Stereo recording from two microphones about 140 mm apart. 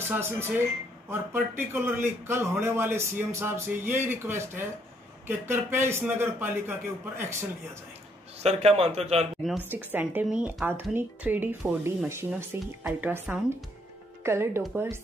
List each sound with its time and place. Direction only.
0.1 s speech: 15° right (ahead or behind)
8.4 s a man's voice: 50° right (ahead or behind)
9.6 s speech: 15° right (ahead or behind)